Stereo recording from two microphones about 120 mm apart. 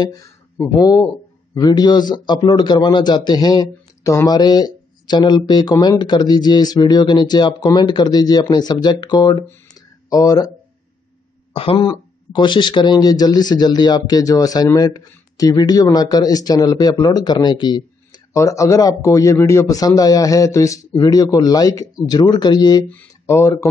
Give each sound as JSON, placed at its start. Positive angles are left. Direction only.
{"t": 0.0, "sound": "a man's voice", "side_deg": 30}
{"t": 11.5, "sound": "speech", "side_deg": 50}
{"t": 11.9, "sound": "a man's voice", "side_deg": 40}
{"t": 18.3, "sound": "a man's voice", "side_deg": 25}
{"t": 22.8, "sound": "a sound", "side_deg": 15}
{"t": 23.3, "sound": "a man's voice", "side_deg": 25}